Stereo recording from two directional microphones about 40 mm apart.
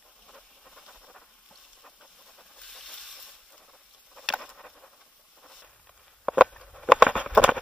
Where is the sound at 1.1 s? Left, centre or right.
Centre.